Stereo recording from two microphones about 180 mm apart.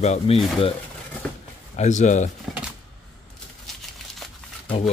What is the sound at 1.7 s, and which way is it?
Speech, 40° left (ahead or behind).